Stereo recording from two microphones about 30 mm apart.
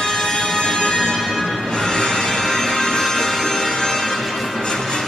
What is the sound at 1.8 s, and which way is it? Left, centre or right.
Music, centre.